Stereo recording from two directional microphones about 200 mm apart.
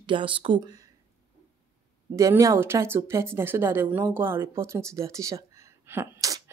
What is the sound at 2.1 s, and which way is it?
Speech, 15° right (ahead or behind).